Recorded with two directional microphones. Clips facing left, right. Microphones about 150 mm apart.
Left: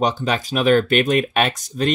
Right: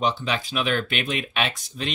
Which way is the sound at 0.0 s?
45° left (ahead or behind).